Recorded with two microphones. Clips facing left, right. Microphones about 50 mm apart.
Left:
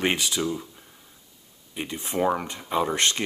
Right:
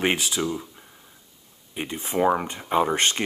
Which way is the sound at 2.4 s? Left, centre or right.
Right.